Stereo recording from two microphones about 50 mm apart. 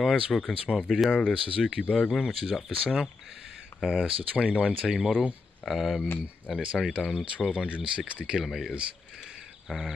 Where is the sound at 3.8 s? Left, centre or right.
Right.